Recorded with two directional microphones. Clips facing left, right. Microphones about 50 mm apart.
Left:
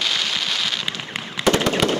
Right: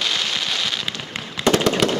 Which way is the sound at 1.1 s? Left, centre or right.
Centre.